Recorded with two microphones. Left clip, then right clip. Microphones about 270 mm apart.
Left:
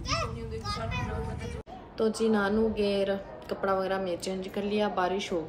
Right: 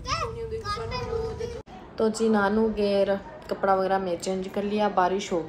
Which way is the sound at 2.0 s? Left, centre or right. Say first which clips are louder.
Right 4 dB; centre.